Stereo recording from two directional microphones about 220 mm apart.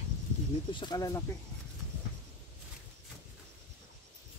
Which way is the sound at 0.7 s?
20° left (ahead or behind).